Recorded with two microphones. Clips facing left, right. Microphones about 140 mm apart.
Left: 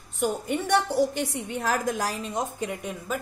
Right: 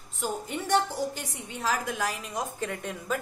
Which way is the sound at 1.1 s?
60° left (ahead or behind).